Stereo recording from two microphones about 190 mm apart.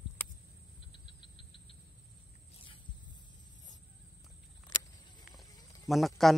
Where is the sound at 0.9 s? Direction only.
25° left (ahead or behind).